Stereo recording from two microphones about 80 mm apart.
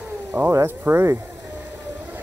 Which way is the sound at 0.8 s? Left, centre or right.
Right.